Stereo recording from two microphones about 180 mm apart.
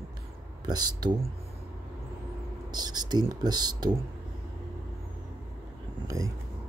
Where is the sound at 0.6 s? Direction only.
20° right (ahead or behind).